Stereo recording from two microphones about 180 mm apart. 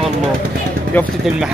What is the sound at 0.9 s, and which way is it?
Speech, 10° left (ahead or behind).